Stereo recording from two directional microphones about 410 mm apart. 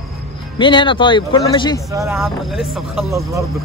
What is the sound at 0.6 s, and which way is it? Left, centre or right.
Speech, centre.